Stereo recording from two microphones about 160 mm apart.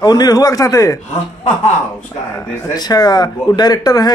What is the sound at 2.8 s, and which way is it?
A man's voice, 25° left (ahead or behind).